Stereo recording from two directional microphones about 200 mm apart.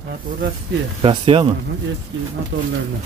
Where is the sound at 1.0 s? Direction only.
25° right (ahead or behind).